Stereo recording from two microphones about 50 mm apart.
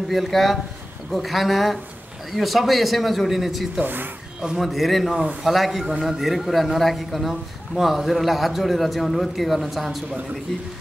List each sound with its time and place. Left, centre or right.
0.1 s a man's voice: centre
3.8 s speech: right
4.6 s a man's voice: centre